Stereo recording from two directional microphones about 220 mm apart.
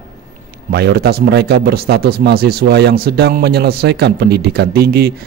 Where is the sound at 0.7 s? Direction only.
45° right (ahead or behind).